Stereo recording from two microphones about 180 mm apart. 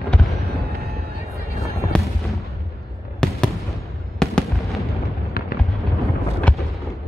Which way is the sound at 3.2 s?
5° left (ahead or behind).